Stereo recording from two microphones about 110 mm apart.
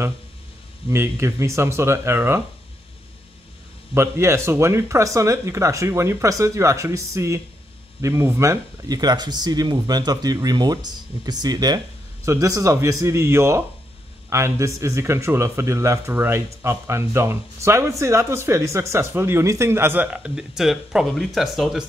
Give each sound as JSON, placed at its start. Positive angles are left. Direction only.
{"t": 0.8, "sound": "speech", "side_deg": -25}
{"t": 3.9, "sound": "speech", "side_deg": -25}